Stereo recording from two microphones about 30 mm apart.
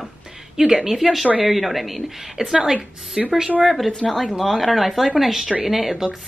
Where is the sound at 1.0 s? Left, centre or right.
Centre.